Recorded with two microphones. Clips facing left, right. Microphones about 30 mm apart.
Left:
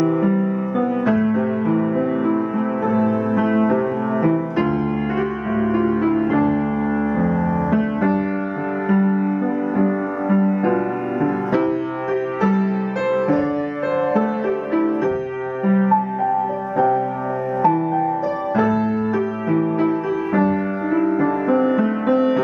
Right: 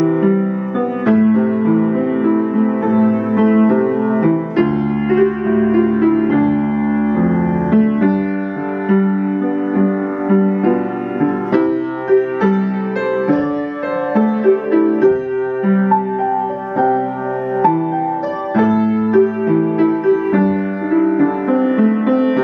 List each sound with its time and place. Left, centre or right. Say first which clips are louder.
0.0 s music: right 4 dB; centre
8.8 s music: right 3 dB; centre
10.3 s music: right 4 dB; centre
14.1 s music: right 6 dB; centre
18.6 s music: right 6 dB; centre